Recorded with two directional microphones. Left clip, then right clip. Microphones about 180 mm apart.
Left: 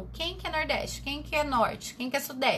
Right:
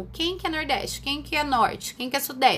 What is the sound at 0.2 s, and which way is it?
A woman's voice, 30° right (ahead or behind).